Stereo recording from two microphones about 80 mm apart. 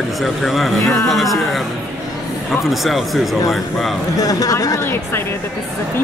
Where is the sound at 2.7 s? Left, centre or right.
Centre.